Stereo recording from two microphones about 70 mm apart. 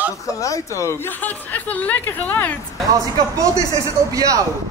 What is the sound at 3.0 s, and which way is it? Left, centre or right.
Speech, right.